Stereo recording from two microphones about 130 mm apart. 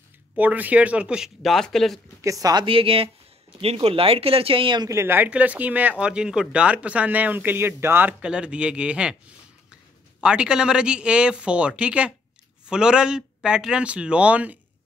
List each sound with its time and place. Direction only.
0.4 s speech: 10° right (ahead or behind)
2.2 s a woman's voice: 25° right (ahead or behind)
2.6 s speech: 45° right (ahead or behind)
4.8 s speech: 20° right (ahead or behind)
10.2 s speech: 5° right (ahead or behind)